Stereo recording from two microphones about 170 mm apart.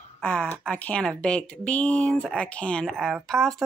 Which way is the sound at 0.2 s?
5° left (ahead or behind).